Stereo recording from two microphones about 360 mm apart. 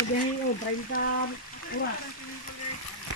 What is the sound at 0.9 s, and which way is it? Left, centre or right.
Speech, left.